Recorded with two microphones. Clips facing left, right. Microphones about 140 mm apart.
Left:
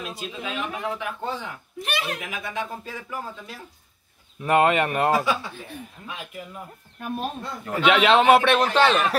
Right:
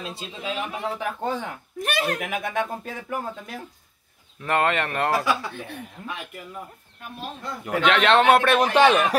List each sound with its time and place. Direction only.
0.0 s speech: 30° right (ahead or behind); by 3.5 s 55° right (ahead or behind)
4.4 s speech: 15° left (ahead or behind)
5.2 s speech: 80° right
7.8 s speech: 10° left (ahead or behind)
8.5 s speech: 10° right (ahead or behind)